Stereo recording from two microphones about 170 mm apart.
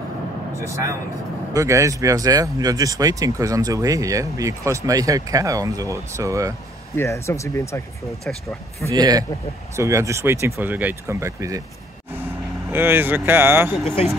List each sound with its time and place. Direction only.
1.5 s speech: 20° right (ahead or behind)
7.0 s speech: 15° left (ahead or behind)
8.3 s speech: 5° left (ahead or behind)
8.9 s speech: 20° right (ahead or behind)
12.6 s speech: 10° right (ahead or behind)